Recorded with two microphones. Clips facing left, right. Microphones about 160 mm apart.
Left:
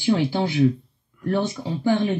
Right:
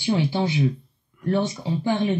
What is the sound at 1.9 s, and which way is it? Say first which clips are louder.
Speech: left 2 dB; 20° right (ahead or behind).